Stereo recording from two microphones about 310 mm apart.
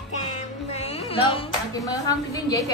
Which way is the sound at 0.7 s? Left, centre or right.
Centre.